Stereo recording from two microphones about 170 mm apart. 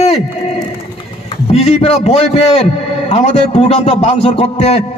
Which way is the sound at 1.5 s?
35° left (ahead or behind).